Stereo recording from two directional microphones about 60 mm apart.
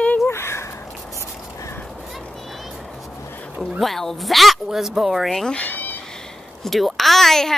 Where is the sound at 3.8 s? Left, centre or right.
Centre.